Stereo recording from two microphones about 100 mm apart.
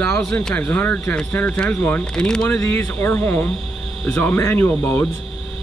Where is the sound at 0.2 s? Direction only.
5° left (ahead or behind).